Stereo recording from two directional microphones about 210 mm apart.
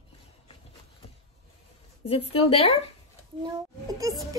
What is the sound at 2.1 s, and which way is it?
Speech, 25° left (ahead or behind).